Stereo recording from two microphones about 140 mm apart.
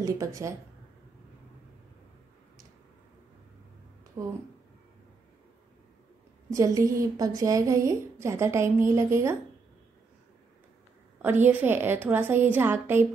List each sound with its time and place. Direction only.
0.0 s a woman's voice: 25° right (ahead or behind)
4.2 s a woman's voice: 25° right (ahead or behind)
6.5 s a woman's voice: 25° right (ahead or behind)
11.2 s a woman's voice: 15° right (ahead or behind)